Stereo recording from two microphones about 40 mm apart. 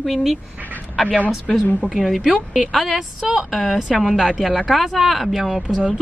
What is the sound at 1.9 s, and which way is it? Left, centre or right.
A woman's voice, centre.